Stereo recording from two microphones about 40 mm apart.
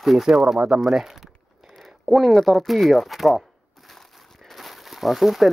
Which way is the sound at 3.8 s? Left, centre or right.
Centre.